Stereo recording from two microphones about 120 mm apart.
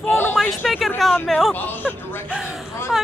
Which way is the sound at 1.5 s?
15° left (ahead or behind).